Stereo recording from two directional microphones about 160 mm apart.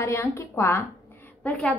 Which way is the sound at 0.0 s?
15° left (ahead or behind).